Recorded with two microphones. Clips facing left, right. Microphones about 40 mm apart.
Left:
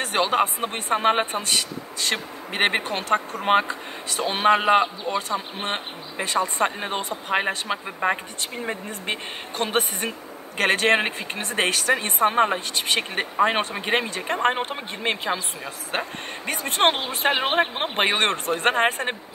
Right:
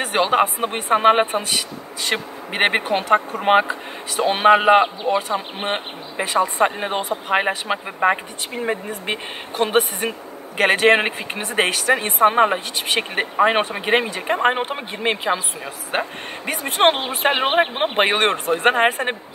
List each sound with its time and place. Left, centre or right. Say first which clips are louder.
0.2 s speech: right 4 dB; centre
4.2 s speech: right 5 dB; right
4.8 s speech: right 6 dB; right
6.1 s speech: right 5 dB; centre
17.3 s speech: right 3 dB; right; by 19.1 s centre